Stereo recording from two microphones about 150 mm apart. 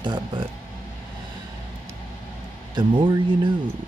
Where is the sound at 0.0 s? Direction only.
30° right (ahead or behind).